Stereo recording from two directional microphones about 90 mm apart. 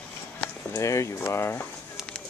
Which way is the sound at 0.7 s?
35° left (ahead or behind).